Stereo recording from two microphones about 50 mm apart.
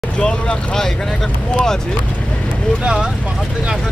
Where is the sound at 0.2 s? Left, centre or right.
Centre.